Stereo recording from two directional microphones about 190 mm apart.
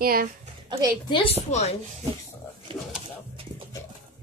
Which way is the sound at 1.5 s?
35° left (ahead or behind).